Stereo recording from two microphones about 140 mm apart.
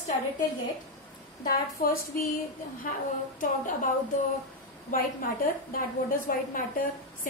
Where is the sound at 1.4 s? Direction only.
90° left.